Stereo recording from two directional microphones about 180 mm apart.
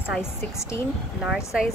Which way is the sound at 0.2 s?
15° left (ahead or behind).